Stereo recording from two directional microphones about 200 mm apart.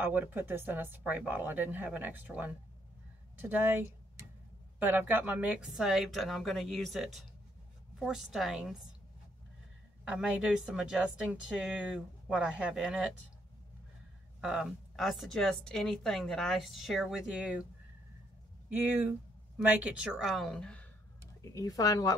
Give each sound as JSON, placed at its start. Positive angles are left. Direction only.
{"t": 0.0, "sound": "a woman's voice", "side_deg": -10}
{"t": 10.0, "sound": "a woman's voice", "side_deg": -5}
{"t": 14.4, "sound": "a woman's voice", "side_deg": -5}
{"t": 18.7, "sound": "a woman's voice", "side_deg": -10}
{"t": 21.5, "sound": "a woman's voice", "side_deg": 15}